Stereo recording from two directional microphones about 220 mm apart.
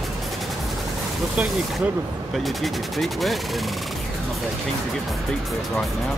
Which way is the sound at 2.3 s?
Centre (ahead or behind).